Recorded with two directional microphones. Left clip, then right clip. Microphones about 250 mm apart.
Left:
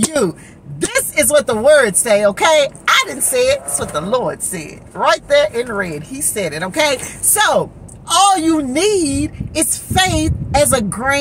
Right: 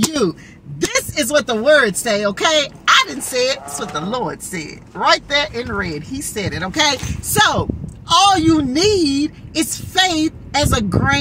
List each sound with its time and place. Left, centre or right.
0.1 s speech: centre